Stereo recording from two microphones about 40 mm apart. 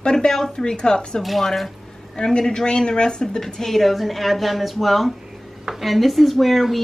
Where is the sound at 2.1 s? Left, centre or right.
Centre.